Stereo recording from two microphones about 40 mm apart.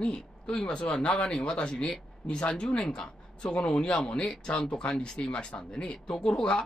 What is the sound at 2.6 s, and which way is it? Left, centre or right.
Speech, centre.